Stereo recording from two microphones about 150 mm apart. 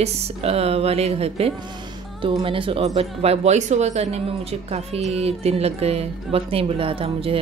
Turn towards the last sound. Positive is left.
turn(degrees=-40)  # may be behind; listen again after turning